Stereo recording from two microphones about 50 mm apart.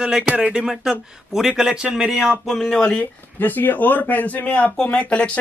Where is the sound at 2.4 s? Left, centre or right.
Centre.